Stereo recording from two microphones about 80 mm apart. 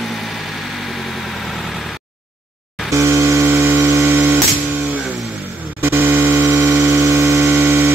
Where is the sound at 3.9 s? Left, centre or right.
Right.